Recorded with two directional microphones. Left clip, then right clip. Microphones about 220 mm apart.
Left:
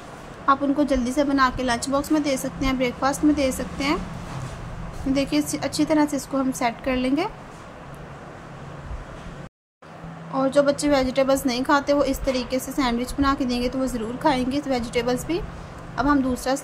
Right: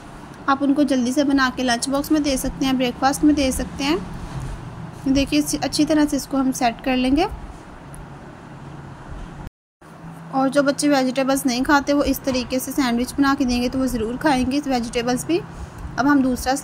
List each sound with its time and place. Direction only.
0.5 s a woman's voice: 10° right (ahead or behind)
5.1 s a woman's voice: 10° right (ahead or behind)
10.3 s a woman's voice: 10° right (ahead or behind)